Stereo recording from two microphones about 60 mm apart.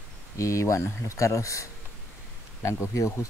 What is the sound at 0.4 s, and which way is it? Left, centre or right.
Speech, left.